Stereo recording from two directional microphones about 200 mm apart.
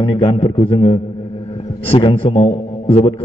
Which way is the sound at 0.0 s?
25° left (ahead or behind).